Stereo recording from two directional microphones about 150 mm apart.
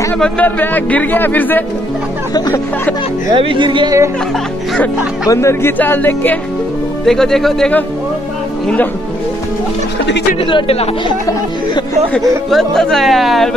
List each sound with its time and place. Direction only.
0.2 s speech: 10° left (ahead or behind)
2.3 s speech: 25° left (ahead or behind)
3.3 s speech: 35° right (ahead or behind)
5.3 s speech: 20° left (ahead or behind)
10.4 s speech: 40° left (ahead or behind)
12.1 s speech: centre (ahead or behind)